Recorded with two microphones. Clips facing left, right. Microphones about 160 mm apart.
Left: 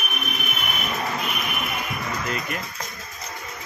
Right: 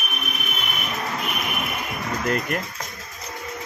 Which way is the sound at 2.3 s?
55° right (ahead or behind).